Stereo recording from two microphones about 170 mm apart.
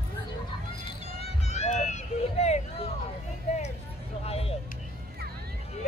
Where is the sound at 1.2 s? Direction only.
40° left (ahead or behind).